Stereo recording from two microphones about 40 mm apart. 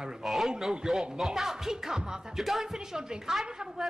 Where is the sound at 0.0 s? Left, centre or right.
Centre.